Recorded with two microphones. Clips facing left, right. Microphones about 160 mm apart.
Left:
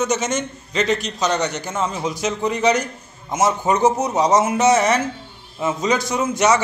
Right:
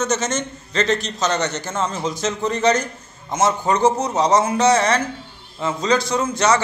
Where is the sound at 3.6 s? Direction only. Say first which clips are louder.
Even; 20° left (ahead or behind).